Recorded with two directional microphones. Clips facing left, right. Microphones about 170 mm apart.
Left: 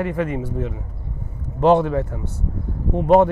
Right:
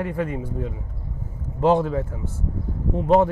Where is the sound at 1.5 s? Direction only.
70° left (ahead or behind).